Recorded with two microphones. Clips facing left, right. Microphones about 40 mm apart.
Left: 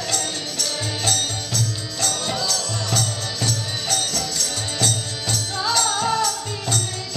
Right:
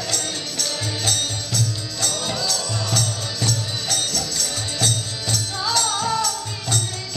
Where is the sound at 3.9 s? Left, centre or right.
Left.